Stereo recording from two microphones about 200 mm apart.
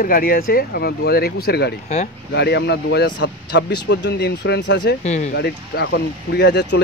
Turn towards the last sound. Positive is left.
turn(degrees=60)  # may be behind; listen again after turning